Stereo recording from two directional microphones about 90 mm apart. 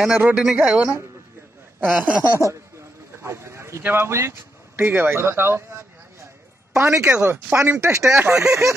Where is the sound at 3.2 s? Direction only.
30° right (ahead or behind).